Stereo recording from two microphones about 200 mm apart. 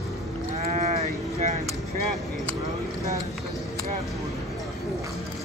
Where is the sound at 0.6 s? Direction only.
35° right (ahead or behind).